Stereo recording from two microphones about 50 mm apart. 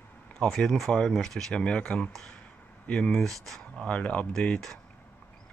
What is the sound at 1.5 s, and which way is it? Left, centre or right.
Speech, left.